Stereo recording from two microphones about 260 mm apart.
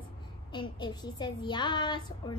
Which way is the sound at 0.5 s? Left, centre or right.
Centre.